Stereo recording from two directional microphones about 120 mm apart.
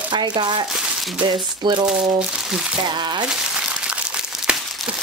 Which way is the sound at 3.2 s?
5° right (ahead or behind).